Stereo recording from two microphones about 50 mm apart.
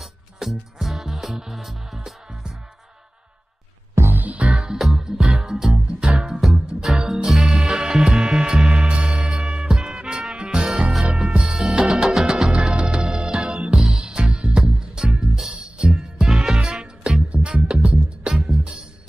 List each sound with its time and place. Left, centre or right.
0.0 s music: centre
4.5 s music: centre
10.6 s music: centre
12.7 s music: centre
17.3 s music: right
17.6 s music: centre